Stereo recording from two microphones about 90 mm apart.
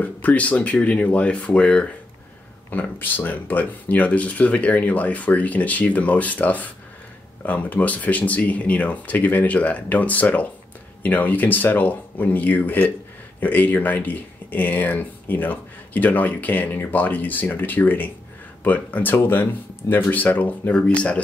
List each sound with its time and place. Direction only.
0.0 s speech: 15° left (ahead or behind)